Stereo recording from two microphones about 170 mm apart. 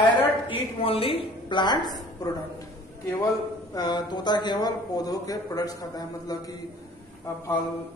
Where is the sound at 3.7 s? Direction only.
25° left (ahead or behind).